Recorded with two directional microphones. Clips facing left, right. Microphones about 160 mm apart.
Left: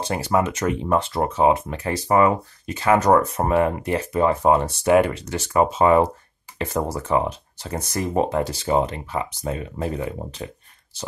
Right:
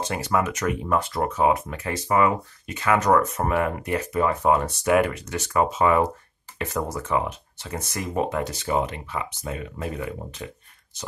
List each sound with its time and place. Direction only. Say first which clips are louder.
0.0 s speech: left 3 dB; 30° left (ahead or behind)